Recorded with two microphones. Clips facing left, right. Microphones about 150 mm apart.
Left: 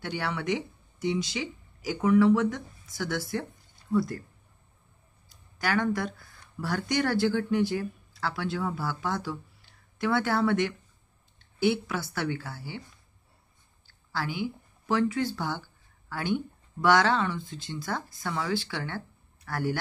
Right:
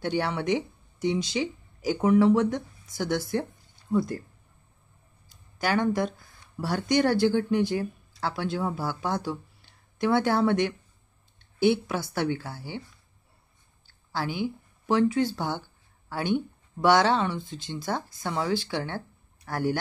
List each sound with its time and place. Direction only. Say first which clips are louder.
0.0 s speech: right 5 dB; 25° right (ahead or behind)
5.6 s speech: right 3 dB; 20° right (ahead or behind)
14.1 s speech: right 2 dB; 20° right (ahead or behind)